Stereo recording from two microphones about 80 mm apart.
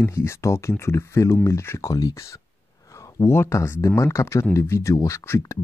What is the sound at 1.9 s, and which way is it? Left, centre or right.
Speech, left.